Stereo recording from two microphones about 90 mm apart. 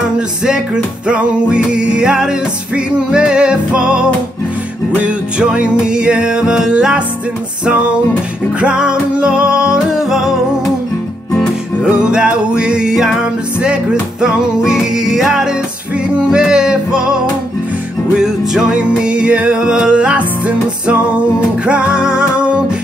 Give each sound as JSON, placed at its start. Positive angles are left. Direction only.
{"t": 1.0, "sound": "music", "side_deg": -10}
{"t": 8.5, "sound": "music", "side_deg": -10}
{"t": 11.8, "sound": "music", "side_deg": -10}
{"t": 14.2, "sound": "music", "side_deg": -5}
{"t": 21.6, "sound": "music", "side_deg": -10}